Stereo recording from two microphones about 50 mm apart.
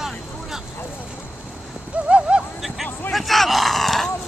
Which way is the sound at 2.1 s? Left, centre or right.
Centre.